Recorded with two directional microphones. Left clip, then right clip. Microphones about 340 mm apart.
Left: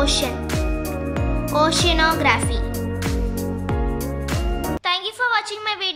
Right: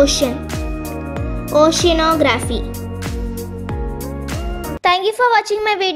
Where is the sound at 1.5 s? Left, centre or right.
Centre.